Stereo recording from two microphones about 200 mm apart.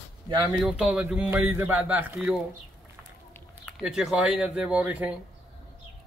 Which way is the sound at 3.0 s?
5° left (ahead or behind).